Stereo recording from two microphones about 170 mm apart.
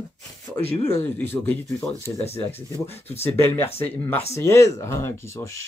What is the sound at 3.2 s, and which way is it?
Speech, 15° left (ahead or behind).